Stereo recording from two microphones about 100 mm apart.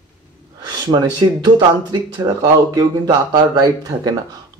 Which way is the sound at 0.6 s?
45° right (ahead or behind).